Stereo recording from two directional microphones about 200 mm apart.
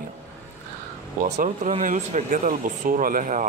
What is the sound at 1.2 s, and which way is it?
Speech, 35° right (ahead or behind).